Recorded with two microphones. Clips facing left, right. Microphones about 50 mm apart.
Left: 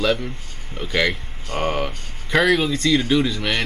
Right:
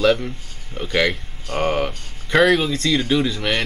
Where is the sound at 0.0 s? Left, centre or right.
Centre.